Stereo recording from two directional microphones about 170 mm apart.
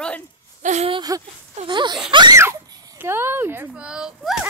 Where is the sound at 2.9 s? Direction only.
15° right (ahead or behind).